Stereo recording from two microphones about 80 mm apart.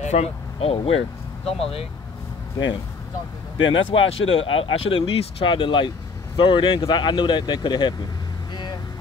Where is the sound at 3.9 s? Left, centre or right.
Left.